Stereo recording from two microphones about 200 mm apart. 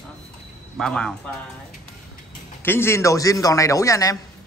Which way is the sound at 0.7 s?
5° left (ahead or behind).